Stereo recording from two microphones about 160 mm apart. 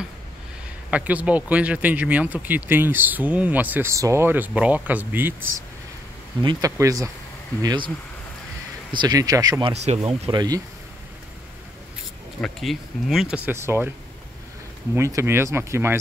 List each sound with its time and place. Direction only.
0.8 s speech: 10° right (ahead or behind)
6.4 s speech: 20° right (ahead or behind)
7.6 s speech: 30° right (ahead or behind)
8.9 s speech: 25° right (ahead or behind)
9.7 s speech: 40° right (ahead or behind)
10.3 s speech: 25° right (ahead or behind)
12.4 s speech: 5° left (ahead or behind)
13.5 s speech: 15° right (ahead or behind)
15.0 s speech: 20° right (ahead or behind)